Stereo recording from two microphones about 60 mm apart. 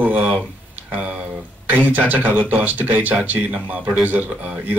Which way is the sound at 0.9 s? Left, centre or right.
Right.